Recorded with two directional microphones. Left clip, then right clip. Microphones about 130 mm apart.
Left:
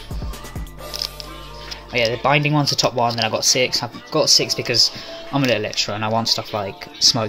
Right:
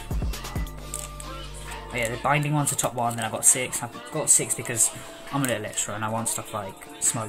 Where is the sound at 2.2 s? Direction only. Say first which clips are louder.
Left 4 dB; 20° left (ahead or behind).